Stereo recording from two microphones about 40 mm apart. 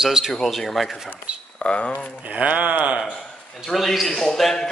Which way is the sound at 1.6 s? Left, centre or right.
Left.